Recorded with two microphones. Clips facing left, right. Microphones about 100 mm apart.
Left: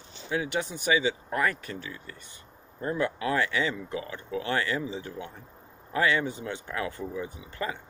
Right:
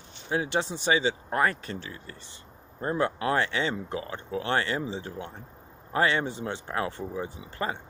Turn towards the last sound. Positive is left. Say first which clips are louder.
# right 2 dB
turn(degrees=-30)  # may be behind; listen again after turning